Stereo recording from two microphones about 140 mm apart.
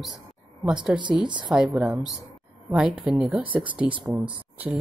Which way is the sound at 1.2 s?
35° right (ahead or behind).